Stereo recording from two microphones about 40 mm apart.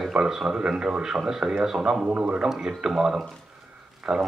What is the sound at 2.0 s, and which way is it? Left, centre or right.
Speech, right.